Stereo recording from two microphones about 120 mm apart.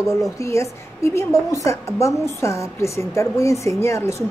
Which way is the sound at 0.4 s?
25° left (ahead or behind).